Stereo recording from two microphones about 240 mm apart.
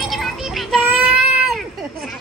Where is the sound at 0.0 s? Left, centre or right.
Centre.